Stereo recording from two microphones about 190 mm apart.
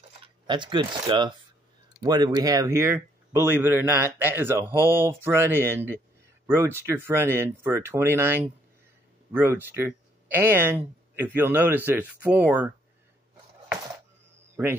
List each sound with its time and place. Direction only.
0.5 s speech: 25° right (ahead or behind); by 12.6 s 10° right (ahead or behind)